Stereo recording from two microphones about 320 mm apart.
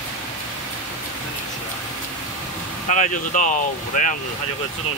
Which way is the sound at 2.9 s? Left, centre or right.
Left.